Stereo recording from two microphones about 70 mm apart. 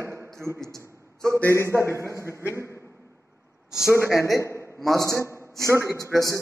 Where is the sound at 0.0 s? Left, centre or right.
Right.